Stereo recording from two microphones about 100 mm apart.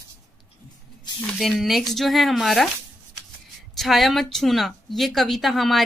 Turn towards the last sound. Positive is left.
turn(degrees=0)  # may be behind; listen again after turning